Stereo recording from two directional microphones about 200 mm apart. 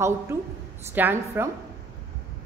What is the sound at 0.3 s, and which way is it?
Speech, 10° right (ahead or behind).